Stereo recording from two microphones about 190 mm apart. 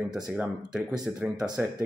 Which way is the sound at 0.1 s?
5° right (ahead or behind).